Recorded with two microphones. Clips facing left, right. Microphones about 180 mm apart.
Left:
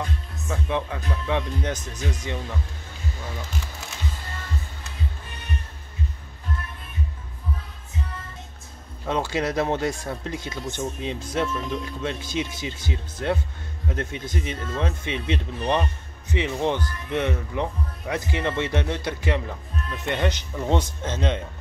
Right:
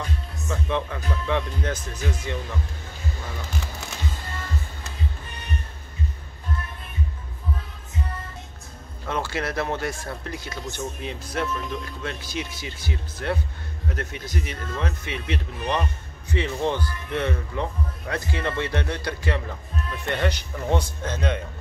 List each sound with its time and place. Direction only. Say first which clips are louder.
0.7 s speech: even; 15° left (ahead or behind)
9.0 s speech: left 3 dB; 20° left (ahead or behind)